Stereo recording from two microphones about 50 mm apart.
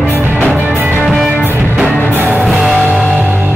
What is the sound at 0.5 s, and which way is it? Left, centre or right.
Music, right.